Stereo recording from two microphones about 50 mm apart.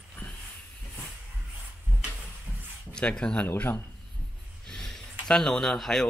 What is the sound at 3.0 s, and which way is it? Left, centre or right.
Speech, centre.